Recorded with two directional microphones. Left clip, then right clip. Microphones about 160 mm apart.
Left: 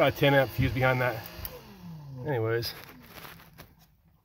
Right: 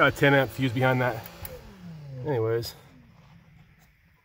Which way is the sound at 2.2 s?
10° right (ahead or behind).